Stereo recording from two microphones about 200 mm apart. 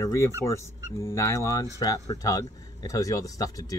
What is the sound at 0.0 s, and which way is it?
Speech, 15° left (ahead or behind).